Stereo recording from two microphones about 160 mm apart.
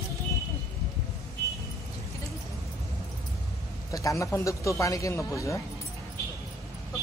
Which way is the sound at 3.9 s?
20° left (ahead or behind).